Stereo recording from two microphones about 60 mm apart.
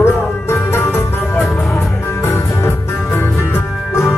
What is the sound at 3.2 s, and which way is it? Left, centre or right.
Music, left.